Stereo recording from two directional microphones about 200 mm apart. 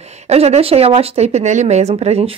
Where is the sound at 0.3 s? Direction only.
30° right (ahead or behind).